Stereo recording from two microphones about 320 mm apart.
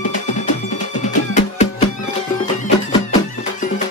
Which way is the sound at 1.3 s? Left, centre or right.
Left.